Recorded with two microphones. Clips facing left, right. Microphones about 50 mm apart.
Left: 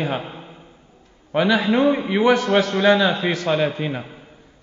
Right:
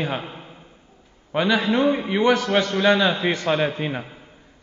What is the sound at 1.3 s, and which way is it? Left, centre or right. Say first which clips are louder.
A man's voice: left 2 dB; centre.